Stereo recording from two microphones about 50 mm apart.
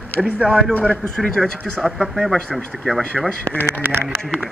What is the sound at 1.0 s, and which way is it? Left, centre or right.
Speech, centre.